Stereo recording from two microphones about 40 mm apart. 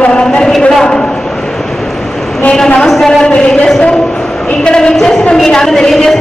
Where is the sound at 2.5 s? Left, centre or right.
Centre.